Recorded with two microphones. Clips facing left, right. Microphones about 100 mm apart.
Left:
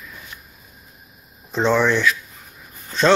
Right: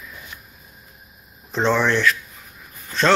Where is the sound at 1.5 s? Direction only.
10° left (ahead or behind).